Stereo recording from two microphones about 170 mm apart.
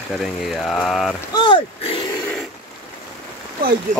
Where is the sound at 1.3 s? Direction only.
25° left (ahead or behind).